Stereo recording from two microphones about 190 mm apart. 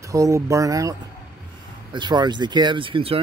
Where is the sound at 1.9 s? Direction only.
25° right (ahead or behind).